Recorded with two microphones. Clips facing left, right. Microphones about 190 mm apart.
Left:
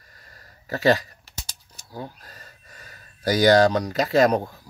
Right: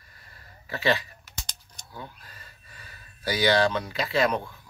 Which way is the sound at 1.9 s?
35° left (ahead or behind).